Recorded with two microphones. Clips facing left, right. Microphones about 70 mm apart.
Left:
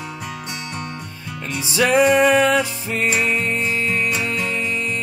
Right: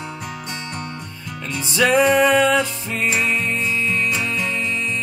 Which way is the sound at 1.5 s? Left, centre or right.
Centre.